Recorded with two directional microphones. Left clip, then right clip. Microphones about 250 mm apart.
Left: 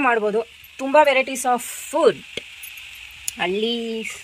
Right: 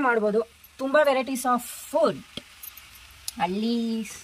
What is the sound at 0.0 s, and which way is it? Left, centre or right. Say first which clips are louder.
Speech: left 3 dB; centre.